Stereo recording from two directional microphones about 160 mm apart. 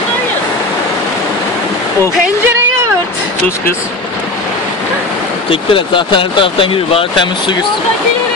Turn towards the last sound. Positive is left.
turn(degrees=30)  # may be behind; listen again after turning